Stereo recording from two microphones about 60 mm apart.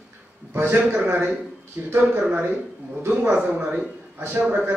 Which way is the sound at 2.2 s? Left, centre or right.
Centre.